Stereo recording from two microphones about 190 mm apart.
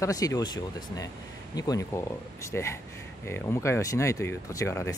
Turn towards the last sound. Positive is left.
turn(degrees=15)  # may be behind; listen again after turning